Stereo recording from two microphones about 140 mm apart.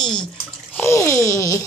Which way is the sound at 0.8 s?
20° left (ahead or behind).